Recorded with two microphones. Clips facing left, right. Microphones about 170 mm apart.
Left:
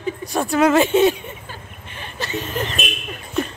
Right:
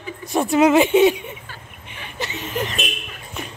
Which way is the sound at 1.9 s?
15° right (ahead or behind).